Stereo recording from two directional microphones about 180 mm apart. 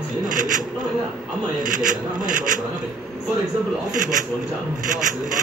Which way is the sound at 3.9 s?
45° right (ahead or behind).